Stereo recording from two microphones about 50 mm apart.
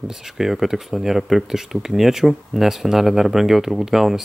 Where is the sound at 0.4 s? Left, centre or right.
Centre.